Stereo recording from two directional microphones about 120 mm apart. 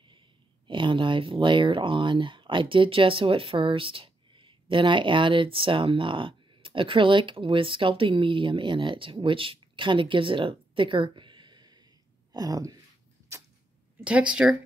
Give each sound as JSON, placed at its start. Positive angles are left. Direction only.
{"t": 0.7, "sound": "speech", "side_deg": -45}
{"t": 14.0, "sound": "speech", "side_deg": -10}